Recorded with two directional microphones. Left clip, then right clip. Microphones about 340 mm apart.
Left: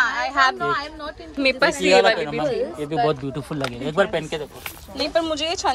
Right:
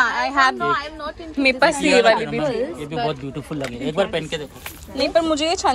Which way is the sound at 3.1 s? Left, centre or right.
Left.